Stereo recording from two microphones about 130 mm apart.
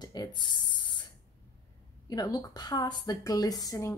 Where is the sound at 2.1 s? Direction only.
30° left (ahead or behind).